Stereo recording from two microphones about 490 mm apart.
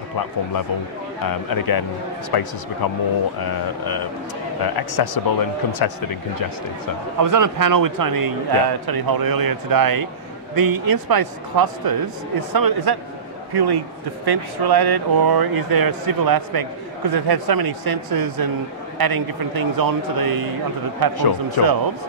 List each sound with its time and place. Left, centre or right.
1.2 s speech: left
7.2 s speech: right
21.6 s speech: left